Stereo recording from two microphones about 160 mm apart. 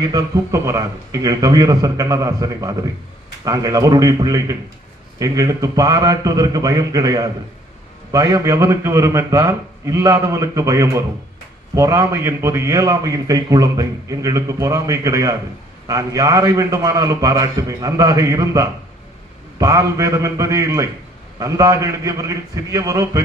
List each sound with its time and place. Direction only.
0.0 s a man's voice: 20° right (ahead or behind)